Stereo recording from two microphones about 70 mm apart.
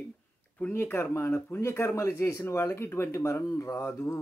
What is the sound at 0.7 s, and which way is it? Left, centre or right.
Speech, left.